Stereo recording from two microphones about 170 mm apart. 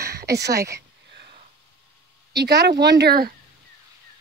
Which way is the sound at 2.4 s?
75° right (ahead or behind).